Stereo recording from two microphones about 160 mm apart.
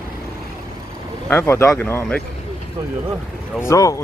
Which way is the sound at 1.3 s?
15° left (ahead or behind).